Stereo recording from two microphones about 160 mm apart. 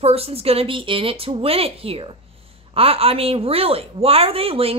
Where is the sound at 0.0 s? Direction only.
40° right (ahead or behind).